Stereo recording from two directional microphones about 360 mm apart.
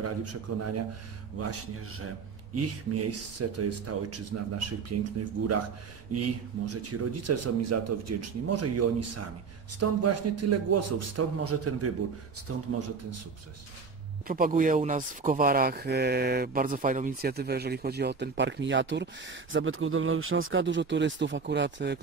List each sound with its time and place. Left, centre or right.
0.0 s speech: right
1.4 s speech: right
6.1 s a man's voice: right
14.2 s speech: right